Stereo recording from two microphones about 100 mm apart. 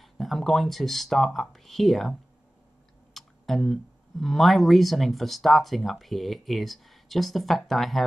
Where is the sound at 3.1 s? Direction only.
Centre (ahead or behind).